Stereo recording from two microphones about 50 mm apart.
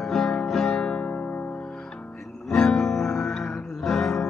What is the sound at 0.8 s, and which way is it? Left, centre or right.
Music, left.